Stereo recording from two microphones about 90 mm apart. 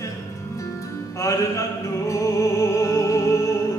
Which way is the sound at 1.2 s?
35° left (ahead or behind).